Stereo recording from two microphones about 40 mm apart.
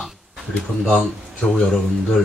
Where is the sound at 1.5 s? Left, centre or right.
Centre.